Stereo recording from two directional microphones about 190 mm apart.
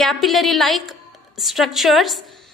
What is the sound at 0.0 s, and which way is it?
A woman's voice, centre (ahead or behind).